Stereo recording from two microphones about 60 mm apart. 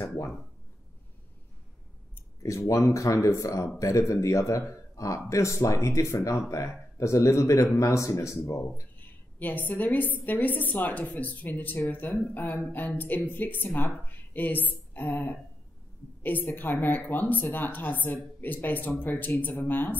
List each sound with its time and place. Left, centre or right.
2.4 s speech: left
9.0 s a woman's voice: left
14.7 s a sound: left
16.2 s speech: left